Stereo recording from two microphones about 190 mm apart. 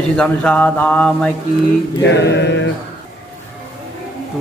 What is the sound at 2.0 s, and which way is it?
Mantra, 65° left (ahead or behind).